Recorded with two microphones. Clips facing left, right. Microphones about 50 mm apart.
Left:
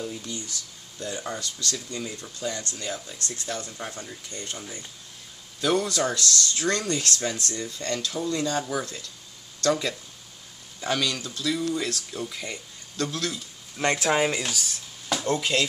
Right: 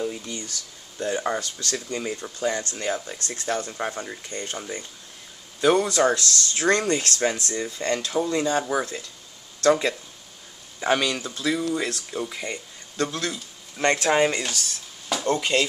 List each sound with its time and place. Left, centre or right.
0.0 s speech: right
5.6 s a man's voice: centre
6.5 s speech: right; by 15.5 s centre